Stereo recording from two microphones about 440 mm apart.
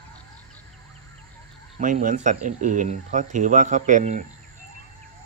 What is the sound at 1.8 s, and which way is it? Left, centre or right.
Speech, centre.